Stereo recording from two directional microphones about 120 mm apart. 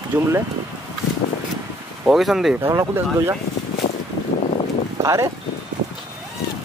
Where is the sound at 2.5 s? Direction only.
20° right (ahead or behind).